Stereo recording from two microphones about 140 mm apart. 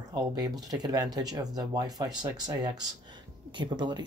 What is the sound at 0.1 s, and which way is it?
Speech, 30° right (ahead or behind).